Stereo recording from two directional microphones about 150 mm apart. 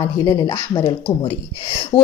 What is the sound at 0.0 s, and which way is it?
A woman's voice, 25° left (ahead or behind).